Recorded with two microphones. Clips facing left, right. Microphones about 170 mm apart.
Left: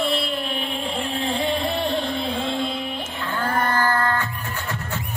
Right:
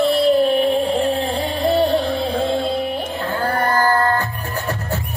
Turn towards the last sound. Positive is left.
turn(degrees=-35)  # may be behind; listen again after turning